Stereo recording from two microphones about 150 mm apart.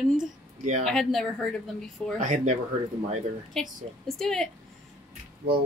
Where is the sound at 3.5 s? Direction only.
5° left (ahead or behind).